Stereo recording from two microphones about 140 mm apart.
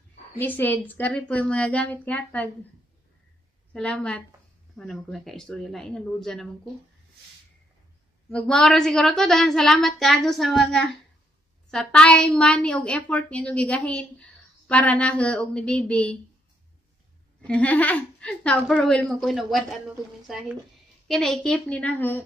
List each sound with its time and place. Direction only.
0.4 s a woman's voice: 15° left (ahead or behind)
3.7 s a woman's voice: 10° left (ahead or behind)
8.3 s a woman's voice: 5° left (ahead or behind)
17.4 s a woman's voice: 10° left (ahead or behind)